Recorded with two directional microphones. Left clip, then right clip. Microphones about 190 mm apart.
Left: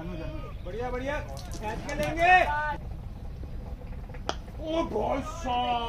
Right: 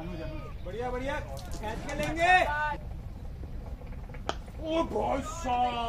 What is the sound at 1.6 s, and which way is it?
Speech, 35° right (ahead or behind).